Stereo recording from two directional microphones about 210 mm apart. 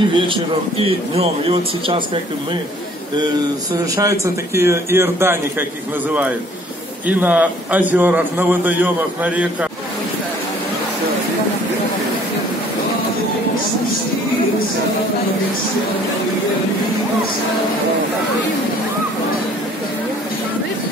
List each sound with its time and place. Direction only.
0.1 s a man's voice: 25° right (ahead or behind)
3.7 s a man's voice: 15° right (ahead or behind)
7.1 s a man's voice: 10° right (ahead or behind)